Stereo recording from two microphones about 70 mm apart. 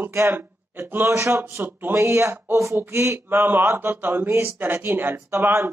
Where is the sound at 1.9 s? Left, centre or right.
Right.